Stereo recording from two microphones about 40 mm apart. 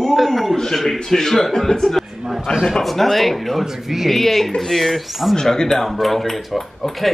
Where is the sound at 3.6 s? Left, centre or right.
Centre.